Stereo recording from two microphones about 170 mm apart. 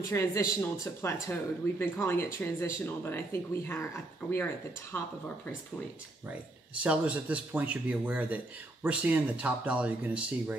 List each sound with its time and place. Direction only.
0.1 s speech: 15° left (ahead or behind)
6.2 s speech: 10° right (ahead or behind)